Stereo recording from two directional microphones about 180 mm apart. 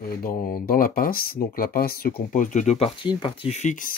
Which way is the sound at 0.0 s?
55° left (ahead or behind).